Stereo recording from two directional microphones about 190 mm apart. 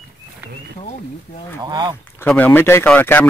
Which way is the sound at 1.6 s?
25° right (ahead or behind).